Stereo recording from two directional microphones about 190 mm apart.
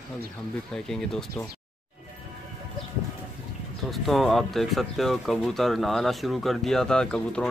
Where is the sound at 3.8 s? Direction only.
Centre (ahead or behind).